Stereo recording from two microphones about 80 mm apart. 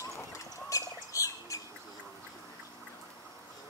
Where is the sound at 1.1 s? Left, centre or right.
Left.